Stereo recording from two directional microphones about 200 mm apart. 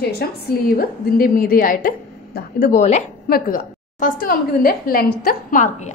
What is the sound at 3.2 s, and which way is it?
A woman's voice, 45° left (ahead or behind).